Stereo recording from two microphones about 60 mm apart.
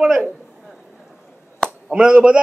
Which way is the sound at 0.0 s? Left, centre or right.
Centre.